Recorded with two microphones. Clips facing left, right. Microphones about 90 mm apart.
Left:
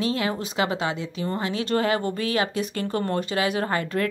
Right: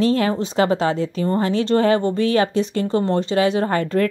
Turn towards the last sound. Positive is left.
turn(degrees=-40)  # may be behind; listen again after turning